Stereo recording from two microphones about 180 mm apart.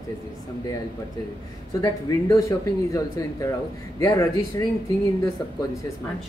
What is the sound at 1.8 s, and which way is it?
Speech, 20° left (ahead or behind).